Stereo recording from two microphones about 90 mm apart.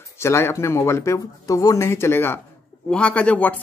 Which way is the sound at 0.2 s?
30° left (ahead or behind).